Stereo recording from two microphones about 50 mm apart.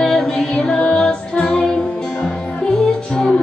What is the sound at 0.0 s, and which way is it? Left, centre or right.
Music, centre.